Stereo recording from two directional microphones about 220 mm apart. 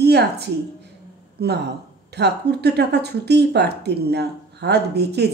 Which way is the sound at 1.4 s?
45° right (ahead or behind).